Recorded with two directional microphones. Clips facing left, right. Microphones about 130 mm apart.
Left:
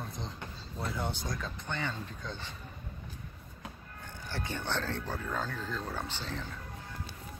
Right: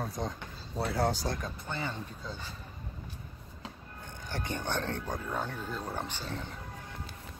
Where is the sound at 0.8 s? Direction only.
70° right (ahead or behind).